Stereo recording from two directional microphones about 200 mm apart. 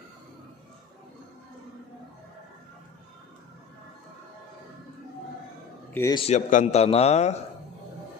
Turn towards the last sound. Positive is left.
turn(degrees=35)  # may be behind; listen again after turning